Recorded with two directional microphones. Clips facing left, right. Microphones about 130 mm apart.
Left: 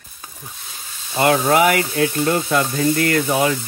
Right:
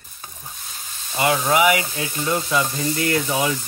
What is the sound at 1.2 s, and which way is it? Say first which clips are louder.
Speech: left 3 dB; 50° left (ahead or behind).